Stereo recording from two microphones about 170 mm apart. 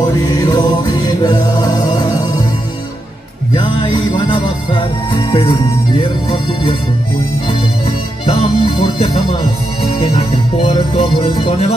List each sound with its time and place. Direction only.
0.3 s music: 25° left (ahead or behind)
3.5 s music: 25° left (ahead or behind)
8.3 s music: 30° left (ahead or behind)